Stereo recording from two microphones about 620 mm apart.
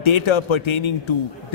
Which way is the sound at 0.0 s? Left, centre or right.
Left.